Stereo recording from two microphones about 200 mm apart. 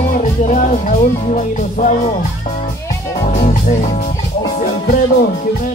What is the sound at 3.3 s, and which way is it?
Music, 40° left (ahead or behind).